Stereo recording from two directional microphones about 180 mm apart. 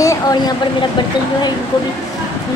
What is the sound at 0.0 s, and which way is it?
Vehicle, 20° left (ahead or behind).